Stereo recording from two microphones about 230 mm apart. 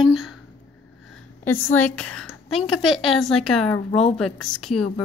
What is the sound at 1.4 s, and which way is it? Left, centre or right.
A woman's voice, centre.